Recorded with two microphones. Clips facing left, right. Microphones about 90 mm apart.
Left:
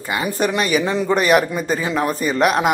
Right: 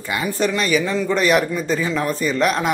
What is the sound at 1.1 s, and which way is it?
Speech, 5° left (ahead or behind).